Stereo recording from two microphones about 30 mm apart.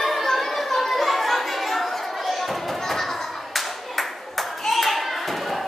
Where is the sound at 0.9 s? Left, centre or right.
Centre.